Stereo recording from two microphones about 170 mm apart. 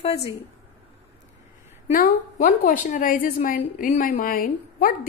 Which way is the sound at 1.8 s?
50° left (ahead or behind).